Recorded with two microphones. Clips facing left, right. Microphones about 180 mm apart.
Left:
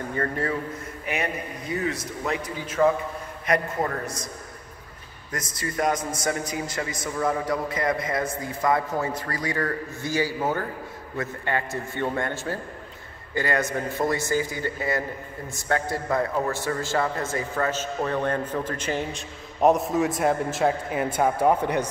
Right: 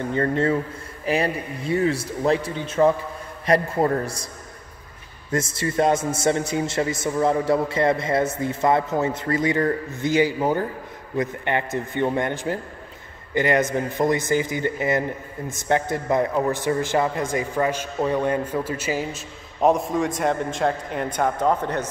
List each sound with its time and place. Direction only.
0.1 s a man's voice: 25° right (ahead or behind)
5.3 s a man's voice: 25° right (ahead or behind); by 21.8 s 10° left (ahead or behind)